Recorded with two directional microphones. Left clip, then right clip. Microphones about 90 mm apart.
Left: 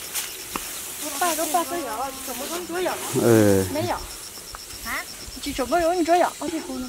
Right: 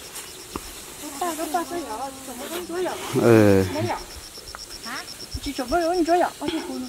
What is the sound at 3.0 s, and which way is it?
Speech, 5° right (ahead or behind).